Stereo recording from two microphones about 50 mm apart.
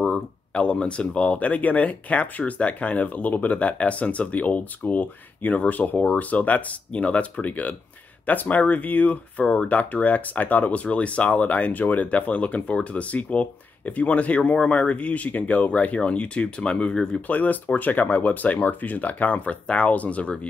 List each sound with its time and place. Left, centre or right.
0.5 s speech: left
17.3 s speech: left